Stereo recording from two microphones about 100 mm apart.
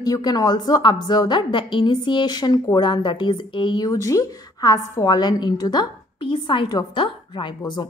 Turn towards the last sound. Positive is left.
turn(degrees=45)  # may be behind; listen again after turning